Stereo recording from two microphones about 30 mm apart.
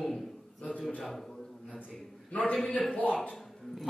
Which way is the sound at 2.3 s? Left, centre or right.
Left.